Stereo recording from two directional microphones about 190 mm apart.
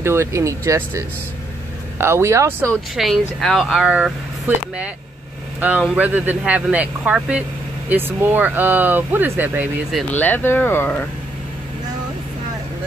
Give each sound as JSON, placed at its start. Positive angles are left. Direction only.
{"t": 0.0, "sound": "speech", "side_deg": -15}
{"t": 2.7, "sound": "speech", "side_deg": 0}
{"t": 5.6, "sound": "speech", "side_deg": -10}
{"t": 10.1, "sound": "speech", "side_deg": 10}